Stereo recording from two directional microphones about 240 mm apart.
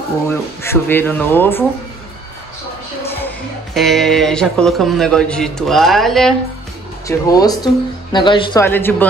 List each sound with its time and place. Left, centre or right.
0.3 s speech: centre
3.7 s a man's voice: centre
7.1 s speech: centre
8.6 s speech: centre